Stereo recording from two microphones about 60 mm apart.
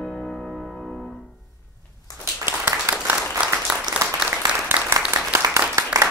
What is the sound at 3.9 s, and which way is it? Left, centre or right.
Applause, right.